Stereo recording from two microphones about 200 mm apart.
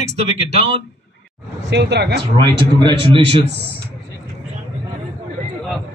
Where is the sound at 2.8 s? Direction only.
25° right (ahead or behind).